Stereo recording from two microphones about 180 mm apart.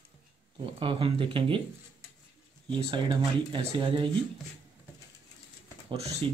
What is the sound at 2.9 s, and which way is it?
Speech, 25° right (ahead or behind).